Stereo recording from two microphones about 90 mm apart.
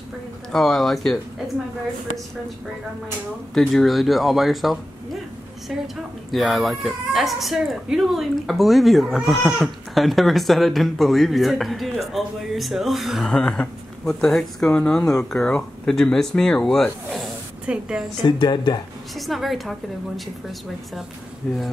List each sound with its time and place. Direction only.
0.5 s speech: 5° left (ahead or behind)
3.5 s speech: centre (ahead or behind)
6.3 s speech: centre (ahead or behind)
17.6 s a woman's voice: 10° right (ahead or behind)
18.2 s speech: 60° left (ahead or behind)
19.1 s speech: centre (ahead or behind)
21.4 s speech: 5° left (ahead or behind)